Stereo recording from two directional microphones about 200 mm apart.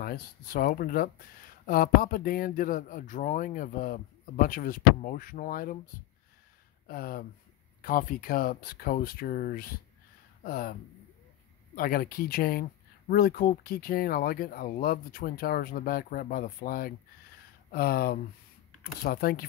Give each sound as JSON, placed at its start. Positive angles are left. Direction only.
{"t": 0.0, "sound": "speech", "side_deg": 50}
{"t": 6.9, "sound": "speech", "side_deg": 45}